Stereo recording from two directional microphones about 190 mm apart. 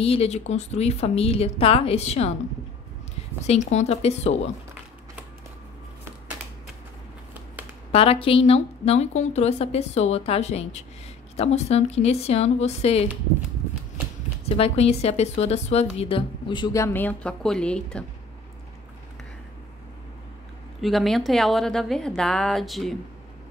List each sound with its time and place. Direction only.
0.0 s a woman's voice: 30° left (ahead or behind)
3.4 s a woman's voice: 35° left (ahead or behind)
7.9 s a woman's voice: 30° left (ahead or behind)
14.4 s speech: 35° left (ahead or behind); by 18.0 s 5° left (ahead or behind)
20.8 s a woman's voice: centre (ahead or behind)